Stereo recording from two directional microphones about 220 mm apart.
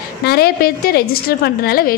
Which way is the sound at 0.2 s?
45° left (ahead or behind).